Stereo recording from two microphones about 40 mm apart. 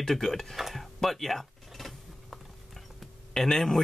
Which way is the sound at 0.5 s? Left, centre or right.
Centre.